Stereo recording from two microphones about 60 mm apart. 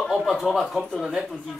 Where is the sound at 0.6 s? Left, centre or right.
Centre.